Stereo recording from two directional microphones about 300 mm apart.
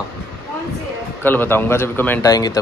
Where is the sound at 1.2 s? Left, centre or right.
Centre.